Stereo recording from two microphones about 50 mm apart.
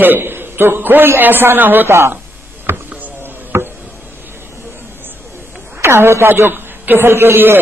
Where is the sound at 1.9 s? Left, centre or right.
Right.